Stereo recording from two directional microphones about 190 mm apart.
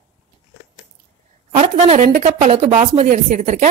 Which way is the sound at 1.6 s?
35° right (ahead or behind).